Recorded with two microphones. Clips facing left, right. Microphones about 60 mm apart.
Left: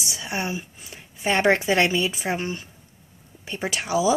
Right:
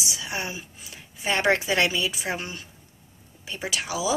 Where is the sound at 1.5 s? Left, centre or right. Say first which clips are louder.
Left 3 dB; left.